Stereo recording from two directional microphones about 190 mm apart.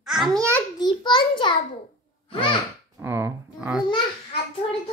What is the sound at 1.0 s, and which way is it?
Speech, 25° left (ahead or behind).